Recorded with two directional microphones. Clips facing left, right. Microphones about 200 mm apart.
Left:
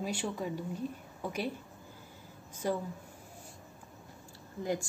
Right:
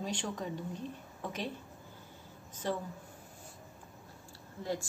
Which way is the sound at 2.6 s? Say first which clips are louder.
Left 3 dB; 10° left (ahead or behind).